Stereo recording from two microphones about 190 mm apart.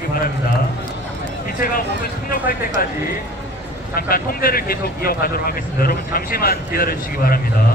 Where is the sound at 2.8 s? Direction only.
50° left (ahead or behind).